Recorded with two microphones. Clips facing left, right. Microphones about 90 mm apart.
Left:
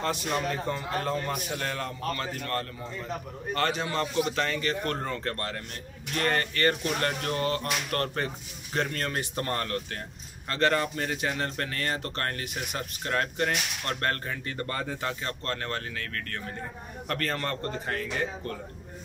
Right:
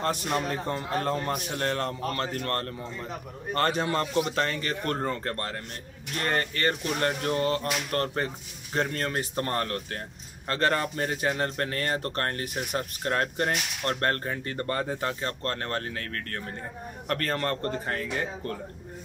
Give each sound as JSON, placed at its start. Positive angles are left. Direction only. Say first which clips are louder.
{"t": 0.0, "sound": "a man's voice", "louder": "right 1 dB", "side_deg": -50}